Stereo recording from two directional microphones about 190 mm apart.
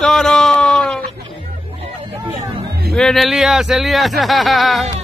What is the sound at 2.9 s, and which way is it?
Speech, centre (ahead or behind).